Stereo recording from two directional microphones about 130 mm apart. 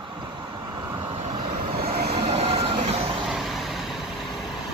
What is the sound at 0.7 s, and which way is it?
Vehicle, 35° right (ahead or behind).